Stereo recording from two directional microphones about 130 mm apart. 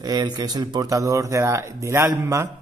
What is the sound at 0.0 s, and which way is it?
Speech, 30° right (ahead or behind).